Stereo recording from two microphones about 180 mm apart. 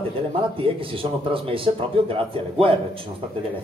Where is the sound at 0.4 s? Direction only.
30° right (ahead or behind).